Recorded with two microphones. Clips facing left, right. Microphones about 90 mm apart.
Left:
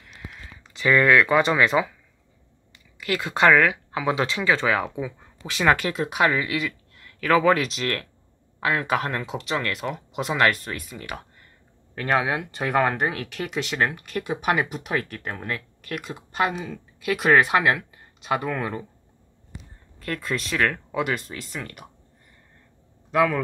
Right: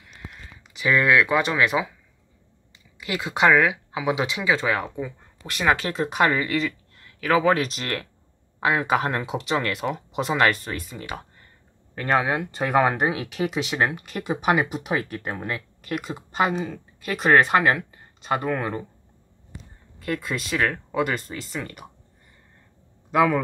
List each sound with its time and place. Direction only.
0.0 s a sound: 5° right (ahead or behind)
3.0 s speech: 20° right (ahead or behind)
4.6 s speech: centre (ahead or behind)
7.1 s speech: 15° right (ahead or behind)
7.6 s speech: 5° right (ahead or behind)
20.0 s speech: 5° right (ahead or behind)
23.1 s speech: 5° right (ahead or behind)